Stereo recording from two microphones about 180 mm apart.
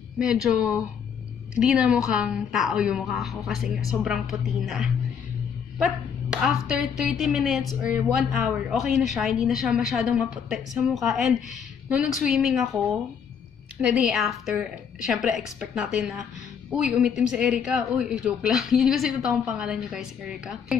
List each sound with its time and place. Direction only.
0.2 s speech: 5° right (ahead or behind)
13.7 s speech: 5° right (ahead or behind)